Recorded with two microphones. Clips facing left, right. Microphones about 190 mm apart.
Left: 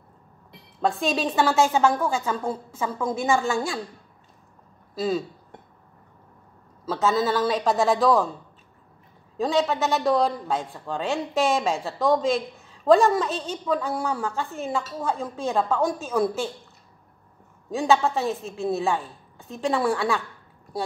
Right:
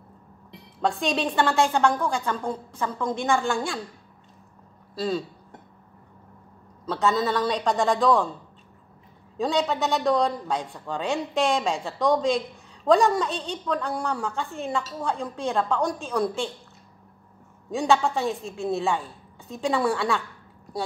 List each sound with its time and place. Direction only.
0.7 s a man's voice: centre (ahead or behind)
4.9 s speech: 5° left (ahead or behind)
6.9 s a man's voice: centre (ahead or behind)
9.4 s a man's voice: centre (ahead or behind)
17.6 s a man's voice: centre (ahead or behind)